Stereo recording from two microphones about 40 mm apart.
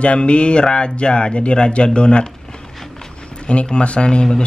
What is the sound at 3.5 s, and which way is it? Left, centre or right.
Speech, left.